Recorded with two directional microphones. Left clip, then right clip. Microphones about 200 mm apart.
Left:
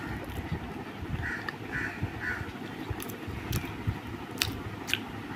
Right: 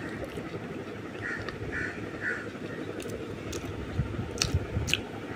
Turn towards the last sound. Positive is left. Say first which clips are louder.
# right 1 dB
turn(degrees=5)  # may be behind; listen again after turning